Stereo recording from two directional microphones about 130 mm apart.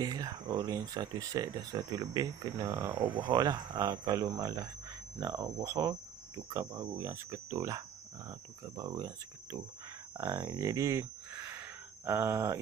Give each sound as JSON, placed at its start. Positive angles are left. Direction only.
{"t": 0.0, "sound": "speech", "side_deg": -30}
{"t": 6.7, "sound": "speech", "side_deg": -40}
{"t": 7.0, "sound": "speech", "side_deg": -20}